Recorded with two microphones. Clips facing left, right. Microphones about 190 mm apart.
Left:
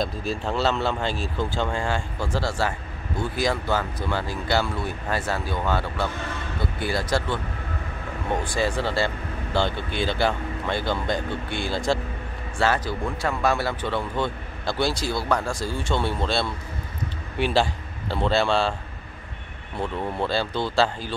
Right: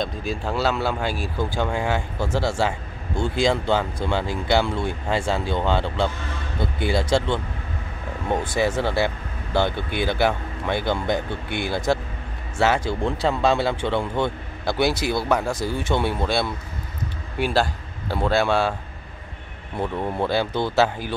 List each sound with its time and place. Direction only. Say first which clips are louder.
0.0 s speech: even; centre (ahead or behind)
19.8 s speech: right 2 dB; 15° right (ahead or behind)